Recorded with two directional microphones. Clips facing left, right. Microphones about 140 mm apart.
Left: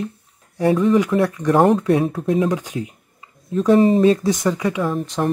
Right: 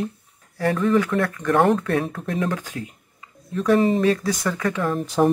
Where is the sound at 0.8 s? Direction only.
20° left (ahead or behind).